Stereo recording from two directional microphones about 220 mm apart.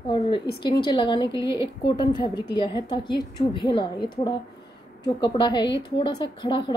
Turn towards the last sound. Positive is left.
turn(degrees=20)  # may be behind; listen again after turning